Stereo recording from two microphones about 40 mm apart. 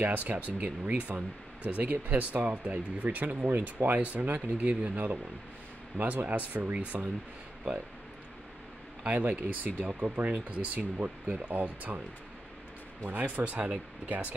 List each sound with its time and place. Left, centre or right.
0.0 s speech: right
9.0 s speech: right
13.1 s speech: right